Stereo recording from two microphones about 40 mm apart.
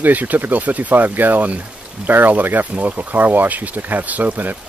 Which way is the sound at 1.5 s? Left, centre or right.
Right.